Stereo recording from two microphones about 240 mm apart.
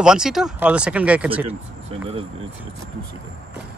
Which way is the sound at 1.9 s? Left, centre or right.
Right.